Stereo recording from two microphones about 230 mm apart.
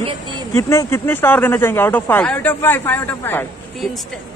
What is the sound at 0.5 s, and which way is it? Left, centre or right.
Speech, centre.